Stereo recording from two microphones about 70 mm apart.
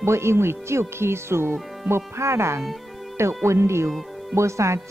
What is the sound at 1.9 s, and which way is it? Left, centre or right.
Speech, right.